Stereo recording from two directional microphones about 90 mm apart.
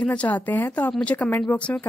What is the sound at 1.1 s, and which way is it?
Speech, 20° left (ahead or behind).